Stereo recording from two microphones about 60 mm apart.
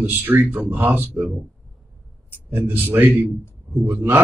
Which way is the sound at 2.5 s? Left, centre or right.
Right.